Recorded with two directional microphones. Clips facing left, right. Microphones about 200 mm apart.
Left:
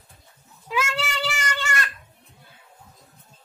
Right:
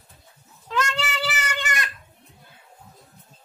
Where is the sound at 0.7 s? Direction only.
10° left (ahead or behind).